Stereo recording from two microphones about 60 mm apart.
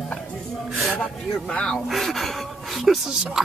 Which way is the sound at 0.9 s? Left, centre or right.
Centre.